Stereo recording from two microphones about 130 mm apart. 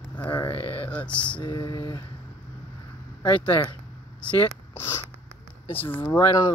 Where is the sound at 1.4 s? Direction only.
30° left (ahead or behind).